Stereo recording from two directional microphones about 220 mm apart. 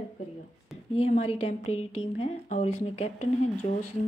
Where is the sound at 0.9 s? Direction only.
30° left (ahead or behind).